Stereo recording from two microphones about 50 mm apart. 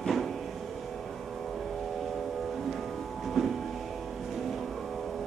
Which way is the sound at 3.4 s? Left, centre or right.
Centre.